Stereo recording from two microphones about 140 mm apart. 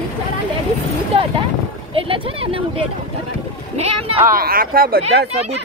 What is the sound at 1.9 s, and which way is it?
Speech, 40° right (ahead or behind).